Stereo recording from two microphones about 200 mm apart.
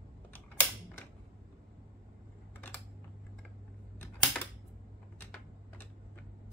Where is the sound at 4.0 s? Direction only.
10° left (ahead or behind).